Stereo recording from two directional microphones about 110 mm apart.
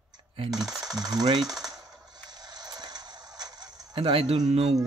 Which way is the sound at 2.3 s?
40° right (ahead or behind).